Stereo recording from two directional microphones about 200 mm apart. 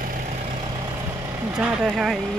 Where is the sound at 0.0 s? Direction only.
40° right (ahead or behind).